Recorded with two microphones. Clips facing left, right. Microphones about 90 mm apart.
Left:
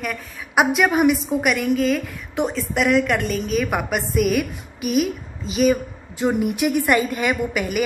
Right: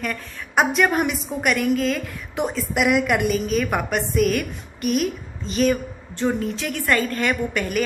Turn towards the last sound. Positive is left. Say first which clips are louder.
# left 1 dB
turn(degrees=10)  # may be behind; listen again after turning